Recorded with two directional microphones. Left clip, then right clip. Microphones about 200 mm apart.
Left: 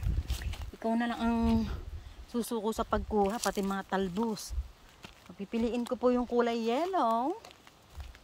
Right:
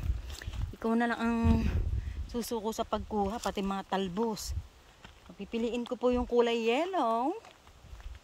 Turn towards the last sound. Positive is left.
turn(degrees=-5)  # may be behind; listen again after turning